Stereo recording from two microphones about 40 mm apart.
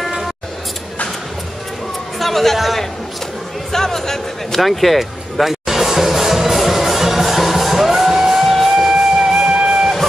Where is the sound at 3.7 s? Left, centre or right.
Centre.